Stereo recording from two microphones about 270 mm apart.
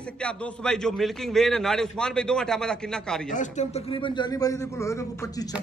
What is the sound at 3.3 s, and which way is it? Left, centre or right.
A man's voice, left.